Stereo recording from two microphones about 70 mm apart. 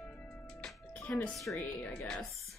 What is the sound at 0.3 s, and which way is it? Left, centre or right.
Music, centre.